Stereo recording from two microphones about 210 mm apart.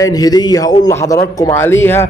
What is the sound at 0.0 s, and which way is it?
A man's voice, 20° left (ahead or behind).